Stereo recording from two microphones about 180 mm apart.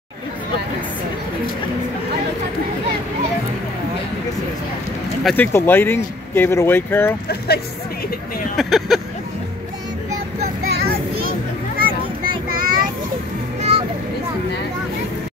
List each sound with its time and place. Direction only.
5.2 s speech: 10° left (ahead or behind)
7.2 s speech: 60° left (ahead or behind)
8.5 s a sound: centre (ahead or behind)
10.4 s child singing: 60° right (ahead or behind)
12.4 s child singing: 50° right (ahead or behind)
13.6 s children playing: 35° right (ahead or behind)